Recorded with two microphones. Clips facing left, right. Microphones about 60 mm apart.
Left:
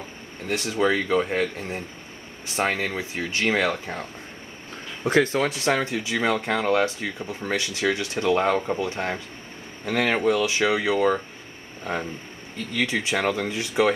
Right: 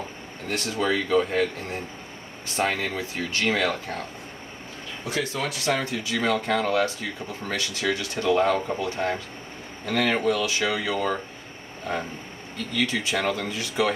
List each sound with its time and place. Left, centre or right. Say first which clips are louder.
0.5 s speech: left 3 dB; centre
5.0 s speech: left 8 dB; left